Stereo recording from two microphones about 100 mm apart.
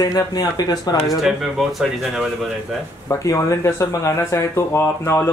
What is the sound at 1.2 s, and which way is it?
Speech, centre (ahead or behind).